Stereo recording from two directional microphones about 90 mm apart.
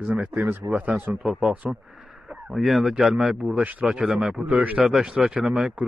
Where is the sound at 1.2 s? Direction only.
5° right (ahead or behind).